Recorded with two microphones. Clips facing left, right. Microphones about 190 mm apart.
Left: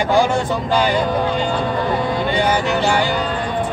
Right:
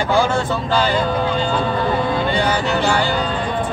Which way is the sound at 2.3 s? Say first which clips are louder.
Left 1 dB; 15° left (ahead or behind).